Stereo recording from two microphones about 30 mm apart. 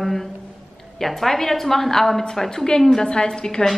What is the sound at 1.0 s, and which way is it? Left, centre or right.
Speech, centre.